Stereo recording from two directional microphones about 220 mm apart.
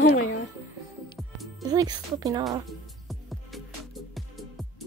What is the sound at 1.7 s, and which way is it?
Speech, 15° right (ahead or behind).